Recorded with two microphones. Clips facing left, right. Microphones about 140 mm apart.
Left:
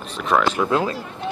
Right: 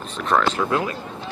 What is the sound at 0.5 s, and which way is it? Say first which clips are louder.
Speech: left 2 dB; 20° left (ahead or behind).